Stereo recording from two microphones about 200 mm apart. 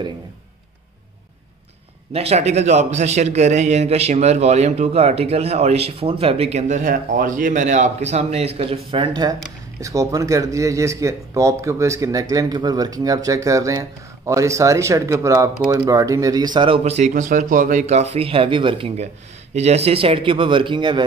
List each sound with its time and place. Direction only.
2.1 s speech: 30° right (ahead or behind)